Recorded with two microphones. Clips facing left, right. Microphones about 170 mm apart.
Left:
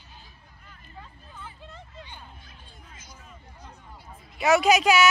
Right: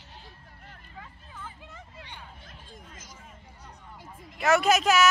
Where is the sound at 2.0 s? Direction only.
75° right (ahead or behind).